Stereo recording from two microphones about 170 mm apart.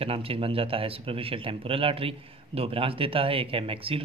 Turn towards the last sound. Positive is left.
turn(degrees=-35)  # may be behind; listen again after turning